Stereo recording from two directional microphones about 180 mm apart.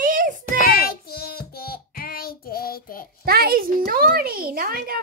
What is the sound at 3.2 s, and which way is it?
A child's voice, 55° right (ahead or behind).